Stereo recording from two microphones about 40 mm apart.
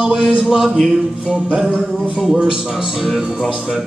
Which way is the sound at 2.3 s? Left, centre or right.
Right.